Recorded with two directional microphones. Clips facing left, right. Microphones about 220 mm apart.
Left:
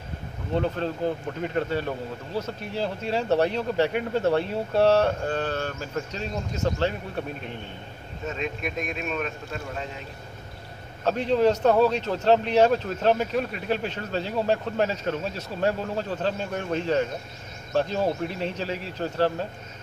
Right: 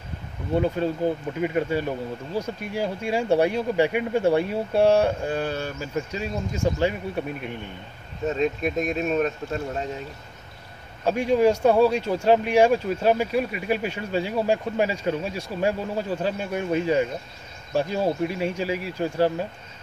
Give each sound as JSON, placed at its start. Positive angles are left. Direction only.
{"t": 0.6, "sound": "speech", "side_deg": -10}
{"t": 8.3, "sound": "speech", "side_deg": -35}
{"t": 11.1, "sound": "speech", "side_deg": -10}